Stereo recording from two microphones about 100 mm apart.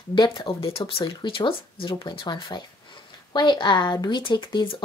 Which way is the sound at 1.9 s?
45° left (ahead or behind).